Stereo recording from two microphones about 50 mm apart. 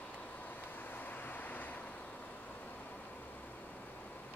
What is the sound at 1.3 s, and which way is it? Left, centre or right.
Vehicle, left.